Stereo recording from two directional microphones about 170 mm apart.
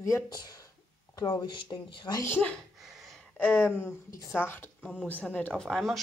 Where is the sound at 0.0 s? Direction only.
20° left (ahead or behind).